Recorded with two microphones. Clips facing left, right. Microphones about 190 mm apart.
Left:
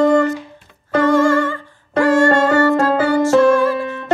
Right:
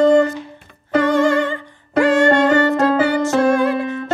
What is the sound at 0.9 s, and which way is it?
Music, 20° right (ahead or behind).